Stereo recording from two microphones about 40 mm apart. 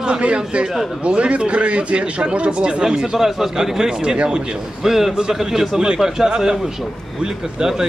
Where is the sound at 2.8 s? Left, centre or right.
Centre.